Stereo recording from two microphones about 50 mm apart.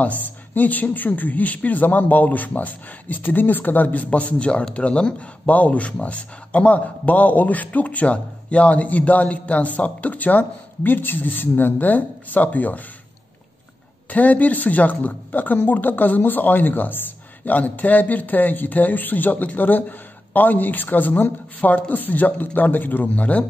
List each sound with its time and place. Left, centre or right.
0.0 s a man's voice: left
14.0 s a man's voice: left